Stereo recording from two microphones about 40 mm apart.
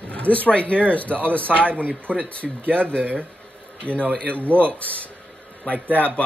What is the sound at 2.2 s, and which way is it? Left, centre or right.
Speech, left.